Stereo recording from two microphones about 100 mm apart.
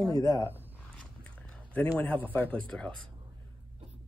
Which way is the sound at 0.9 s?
10° left (ahead or behind).